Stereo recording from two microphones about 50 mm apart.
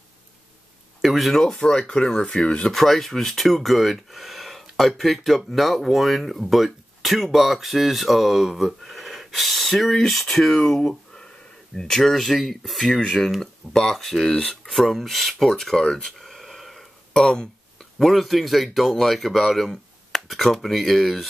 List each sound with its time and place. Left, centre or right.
1.0 s speech: centre
1.3 s speech: centre
2.7 s speech: centre
17.1 s speech: centre